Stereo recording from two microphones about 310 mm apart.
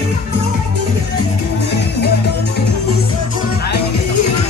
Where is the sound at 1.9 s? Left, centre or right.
Left.